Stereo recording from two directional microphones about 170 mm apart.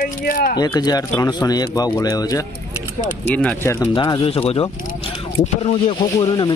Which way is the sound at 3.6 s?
25° left (ahead or behind).